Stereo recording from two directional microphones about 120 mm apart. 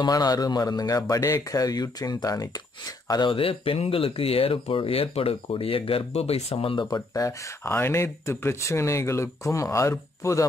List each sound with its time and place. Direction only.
0.0 s a man's voice: 35° left (ahead or behind); by 6.9 s 50° left (ahead or behind)
6.9 s speech: 30° left (ahead or behind)